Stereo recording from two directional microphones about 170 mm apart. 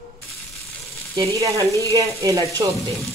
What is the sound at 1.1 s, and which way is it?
Speech, 20° right (ahead or behind).